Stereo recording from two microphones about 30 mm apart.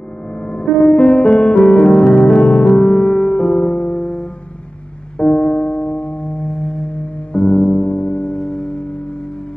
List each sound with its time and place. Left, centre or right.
0.4 s music: left
3.3 s music: left
4.0 s music: left
5.1 s singing bowl: left
7.3 s music: centre
7.7 s music: left